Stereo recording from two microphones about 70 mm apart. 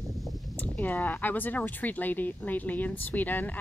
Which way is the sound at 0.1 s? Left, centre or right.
Centre.